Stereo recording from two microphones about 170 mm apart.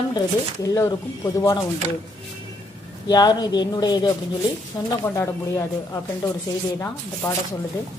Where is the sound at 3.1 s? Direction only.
25° left (ahead or behind).